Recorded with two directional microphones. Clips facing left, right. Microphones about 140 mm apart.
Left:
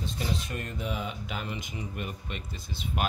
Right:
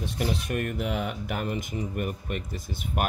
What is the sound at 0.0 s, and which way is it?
Speech, 65° right (ahead or behind).